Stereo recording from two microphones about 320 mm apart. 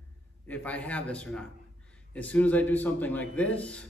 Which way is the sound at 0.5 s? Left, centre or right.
Centre.